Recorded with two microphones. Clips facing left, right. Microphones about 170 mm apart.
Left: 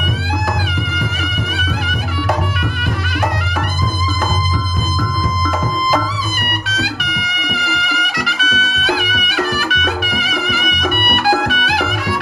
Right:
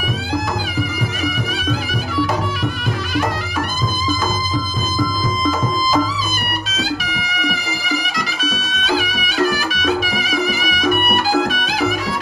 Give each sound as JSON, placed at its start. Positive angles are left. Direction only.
{"t": 8.4, "sound": "music", "side_deg": 60}